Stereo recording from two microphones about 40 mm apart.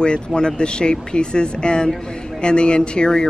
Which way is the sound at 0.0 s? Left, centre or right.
Left.